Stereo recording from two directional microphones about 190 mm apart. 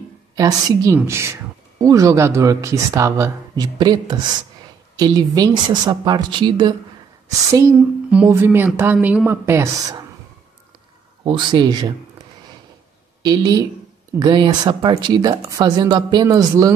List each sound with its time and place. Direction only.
0.4 s a woman's voice: 20° right (ahead or behind)
11.2 s speech: 20° right (ahead or behind)
13.2 s speech: 20° right (ahead or behind)